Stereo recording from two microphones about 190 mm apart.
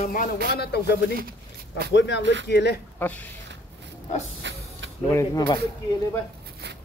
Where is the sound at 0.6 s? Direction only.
60° left (ahead or behind).